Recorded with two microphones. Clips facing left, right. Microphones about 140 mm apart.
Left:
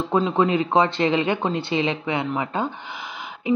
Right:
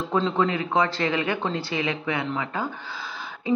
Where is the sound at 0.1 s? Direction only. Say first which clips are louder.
Left 3 dB; 20° left (ahead or behind).